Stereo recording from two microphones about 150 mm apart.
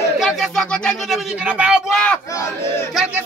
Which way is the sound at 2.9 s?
5° right (ahead or behind).